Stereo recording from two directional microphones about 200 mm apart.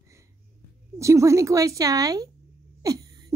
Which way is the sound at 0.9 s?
15° right (ahead or behind).